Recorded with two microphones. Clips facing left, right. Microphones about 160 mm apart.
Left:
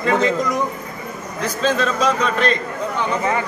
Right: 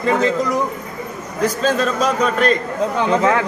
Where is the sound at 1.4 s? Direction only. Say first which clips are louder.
Right 2 dB; 40° right (ahead or behind).